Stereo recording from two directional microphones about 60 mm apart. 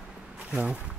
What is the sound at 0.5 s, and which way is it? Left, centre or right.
Speech, right.